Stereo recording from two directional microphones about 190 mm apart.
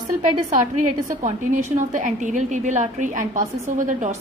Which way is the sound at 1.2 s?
40° right (ahead or behind).